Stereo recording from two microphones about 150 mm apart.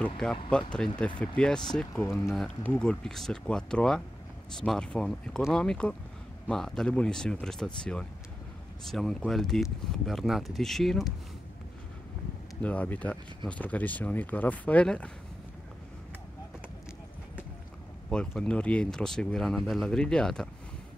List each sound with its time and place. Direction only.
0.5 s speech: 5° left (ahead or behind)
2.0 s speech: 20° left (ahead or behind)
2.3 s speech: 10° left (ahead or behind)
12.6 s speech: 10° left (ahead or behind)
18.1 s speech: 5° left (ahead or behind)